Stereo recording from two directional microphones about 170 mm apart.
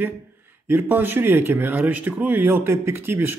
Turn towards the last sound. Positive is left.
turn(degrees=-15)  # may be behind; listen again after turning